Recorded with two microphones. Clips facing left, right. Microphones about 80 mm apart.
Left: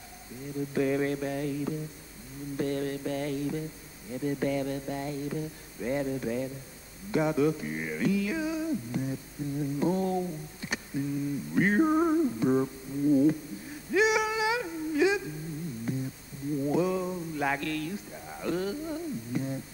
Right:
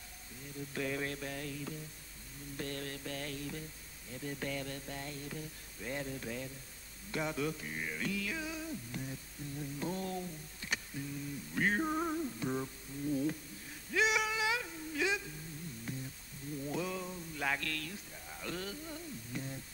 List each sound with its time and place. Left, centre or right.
0.7 s music: centre
13.2 s humming: centre
15.9 s music: centre